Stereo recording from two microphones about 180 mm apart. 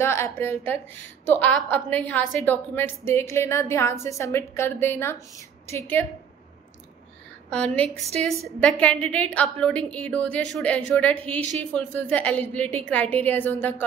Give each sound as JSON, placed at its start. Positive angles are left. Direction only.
{"t": 0.0, "sound": "a woman's voice", "side_deg": 15}
{"t": 7.4, "sound": "a woman's voice", "side_deg": 5}